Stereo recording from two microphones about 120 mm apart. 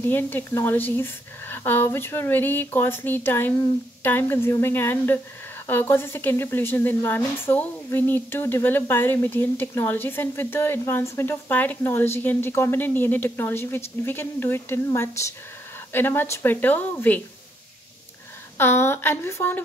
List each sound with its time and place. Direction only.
0.0 s speech: 15° left (ahead or behind)
18.6 s speech: 20° left (ahead or behind)